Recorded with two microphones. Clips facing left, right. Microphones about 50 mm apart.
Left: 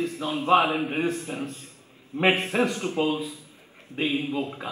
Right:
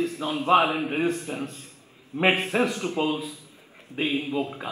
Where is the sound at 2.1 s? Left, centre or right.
Right.